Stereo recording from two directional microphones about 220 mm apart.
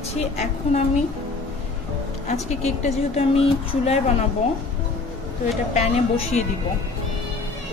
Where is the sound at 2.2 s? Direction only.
30° left (ahead or behind).